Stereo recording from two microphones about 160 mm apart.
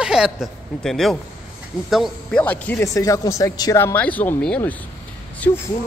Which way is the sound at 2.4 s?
10° left (ahead or behind).